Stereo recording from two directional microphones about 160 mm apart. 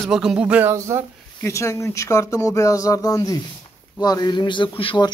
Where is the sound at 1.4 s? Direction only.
15° left (ahead or behind).